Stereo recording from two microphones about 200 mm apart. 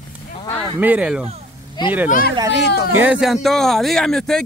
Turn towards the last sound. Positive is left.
turn(degrees=5)  # may be behind; listen again after turning